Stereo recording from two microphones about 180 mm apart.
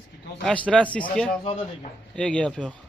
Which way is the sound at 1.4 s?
30° left (ahead or behind).